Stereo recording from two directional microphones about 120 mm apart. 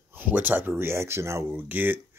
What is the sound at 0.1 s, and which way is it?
Speech, 15° right (ahead or behind).